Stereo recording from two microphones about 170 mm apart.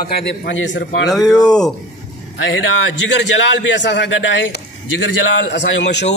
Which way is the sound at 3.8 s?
90° left.